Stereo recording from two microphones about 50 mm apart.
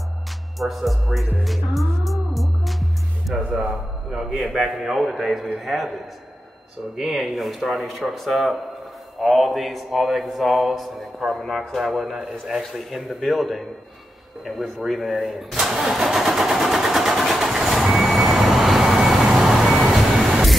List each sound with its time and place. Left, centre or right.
0.6 s a man's voice: centre
1.4 s music: centre
3.5 s a man's voice: centre
7.0 s a man's voice: centre
14.9 s a man's voice: centre
15.5 s vehicle: centre